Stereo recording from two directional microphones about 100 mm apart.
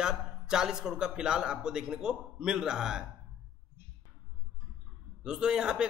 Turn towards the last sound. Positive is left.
turn(degrees=-10)  # may be behind; listen again after turning